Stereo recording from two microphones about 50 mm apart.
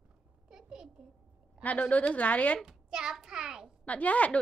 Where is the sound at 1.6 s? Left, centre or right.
Left.